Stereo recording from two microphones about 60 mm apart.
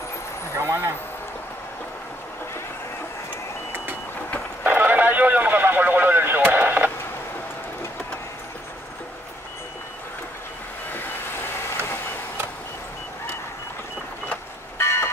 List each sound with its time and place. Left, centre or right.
0.6 s speech: right
4.6 s radio: right
14.8 s a sound: left